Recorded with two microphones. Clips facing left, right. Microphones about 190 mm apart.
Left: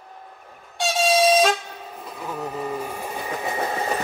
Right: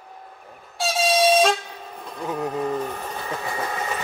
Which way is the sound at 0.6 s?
Centre (ahead or behind).